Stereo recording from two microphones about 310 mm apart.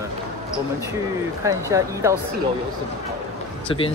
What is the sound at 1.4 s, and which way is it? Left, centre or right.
Speech, centre.